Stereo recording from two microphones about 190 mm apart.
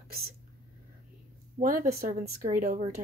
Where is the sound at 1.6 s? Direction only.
45° right (ahead or behind).